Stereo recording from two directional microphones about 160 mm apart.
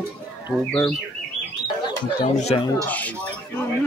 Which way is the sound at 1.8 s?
30° left (ahead or behind).